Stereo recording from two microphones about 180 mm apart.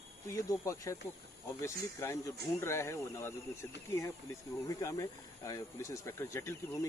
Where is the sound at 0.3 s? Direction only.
15° left (ahead or behind).